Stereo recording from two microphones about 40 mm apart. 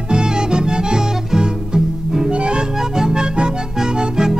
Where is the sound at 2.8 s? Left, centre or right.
Centre.